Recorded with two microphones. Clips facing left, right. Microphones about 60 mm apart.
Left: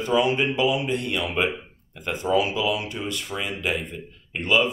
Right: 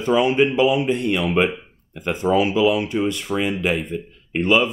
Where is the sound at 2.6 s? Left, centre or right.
Right.